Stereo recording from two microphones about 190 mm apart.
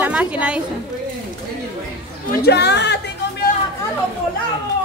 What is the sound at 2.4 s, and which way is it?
Speech, 60° left (ahead or behind).